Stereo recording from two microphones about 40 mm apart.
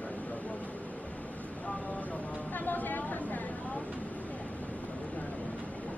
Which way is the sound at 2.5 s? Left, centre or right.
Left.